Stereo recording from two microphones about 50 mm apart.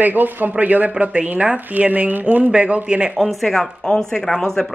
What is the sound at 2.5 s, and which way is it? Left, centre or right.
Speech, right.